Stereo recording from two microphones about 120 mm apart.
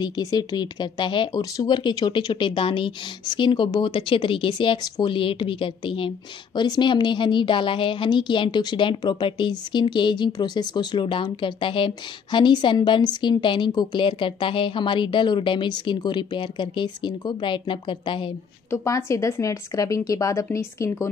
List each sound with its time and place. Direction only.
0.0 s a woman's voice: 35° left (ahead or behind)
18.7 s speech: 25° left (ahead or behind)